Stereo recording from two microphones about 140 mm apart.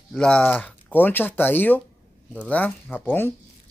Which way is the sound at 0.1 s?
5° left (ahead or behind).